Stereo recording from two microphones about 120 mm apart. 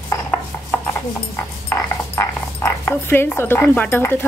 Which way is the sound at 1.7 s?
25° left (ahead or behind).